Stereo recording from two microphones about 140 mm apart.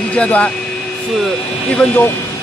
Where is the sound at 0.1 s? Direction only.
10° left (ahead or behind).